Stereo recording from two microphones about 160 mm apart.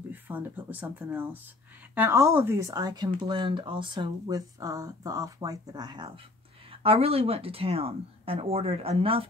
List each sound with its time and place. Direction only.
0.1 s a woman's voice: 10° right (ahead or behind); by 9.2 s 35° right (ahead or behind)